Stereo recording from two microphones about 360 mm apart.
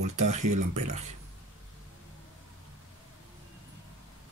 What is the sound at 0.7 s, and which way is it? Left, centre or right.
Speech, right.